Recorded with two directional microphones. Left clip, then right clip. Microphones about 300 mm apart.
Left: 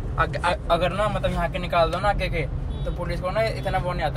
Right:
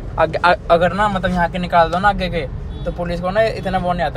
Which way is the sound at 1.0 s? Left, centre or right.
Centre.